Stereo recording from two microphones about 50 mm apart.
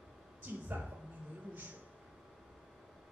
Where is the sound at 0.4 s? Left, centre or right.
Right.